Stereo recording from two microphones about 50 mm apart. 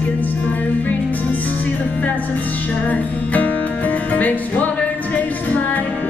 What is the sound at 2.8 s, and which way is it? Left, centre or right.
Music, left.